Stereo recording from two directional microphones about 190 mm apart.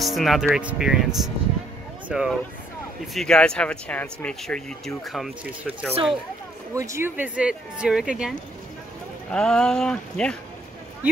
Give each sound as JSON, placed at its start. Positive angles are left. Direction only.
{"t": 0.0, "sound": "speech", "side_deg": 0}
{"t": 6.7, "sound": "speech", "side_deg": -15}